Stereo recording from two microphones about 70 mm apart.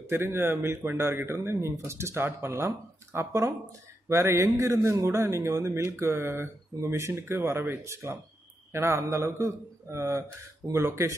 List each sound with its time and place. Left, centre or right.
0.0 s speech: right